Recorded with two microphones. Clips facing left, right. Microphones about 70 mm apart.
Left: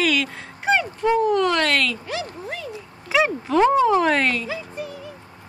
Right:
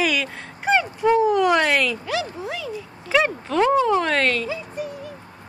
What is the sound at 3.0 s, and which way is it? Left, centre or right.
Speech, centre.